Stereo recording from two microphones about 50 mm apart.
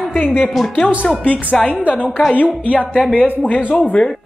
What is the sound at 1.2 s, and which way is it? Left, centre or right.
Speech, left.